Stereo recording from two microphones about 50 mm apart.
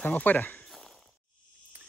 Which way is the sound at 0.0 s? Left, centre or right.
Left.